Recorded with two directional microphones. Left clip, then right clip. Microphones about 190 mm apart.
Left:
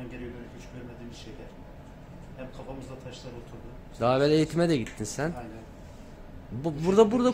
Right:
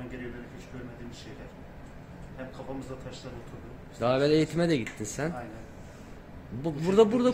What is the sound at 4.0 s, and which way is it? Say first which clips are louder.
Speech: left 1 dB; 15° left (ahead or behind).